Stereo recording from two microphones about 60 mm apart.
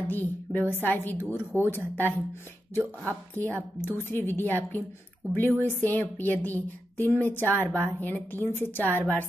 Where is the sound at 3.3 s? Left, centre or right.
Left.